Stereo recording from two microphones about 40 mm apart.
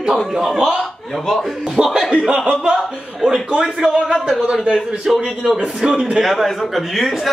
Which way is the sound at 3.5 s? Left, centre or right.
Centre.